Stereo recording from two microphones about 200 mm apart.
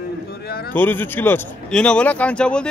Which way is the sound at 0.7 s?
10° left (ahead or behind).